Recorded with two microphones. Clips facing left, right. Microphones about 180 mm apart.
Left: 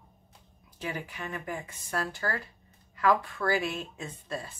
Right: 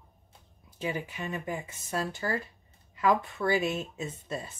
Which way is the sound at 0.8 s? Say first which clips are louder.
Right 3 dB; 20° right (ahead or behind).